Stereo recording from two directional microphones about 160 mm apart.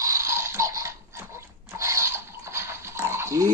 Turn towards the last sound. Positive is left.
turn(degrees=-20)  # may be behind; listen again after turning